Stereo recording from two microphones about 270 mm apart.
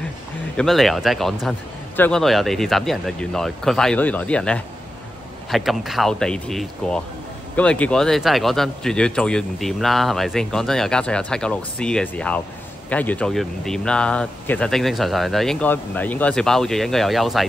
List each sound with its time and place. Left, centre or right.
0.6 s speech: centre